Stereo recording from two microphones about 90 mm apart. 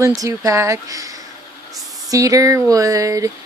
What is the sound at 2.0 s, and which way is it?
Speech, 40° right (ahead or behind).